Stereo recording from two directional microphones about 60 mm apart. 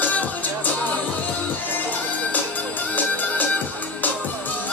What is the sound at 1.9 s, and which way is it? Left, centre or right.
Music, left.